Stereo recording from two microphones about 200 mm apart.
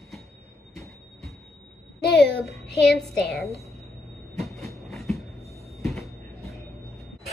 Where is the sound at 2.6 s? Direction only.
55° left (ahead or behind).